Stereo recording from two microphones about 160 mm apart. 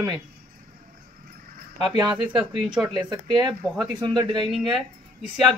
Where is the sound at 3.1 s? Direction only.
25° right (ahead or behind).